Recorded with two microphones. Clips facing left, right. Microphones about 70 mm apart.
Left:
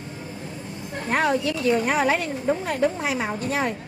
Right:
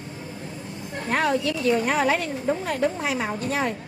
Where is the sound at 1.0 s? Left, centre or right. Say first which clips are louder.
Left 1 dB; centre.